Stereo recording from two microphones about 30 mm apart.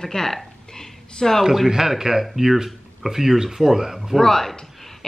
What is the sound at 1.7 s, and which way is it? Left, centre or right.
Speech, centre.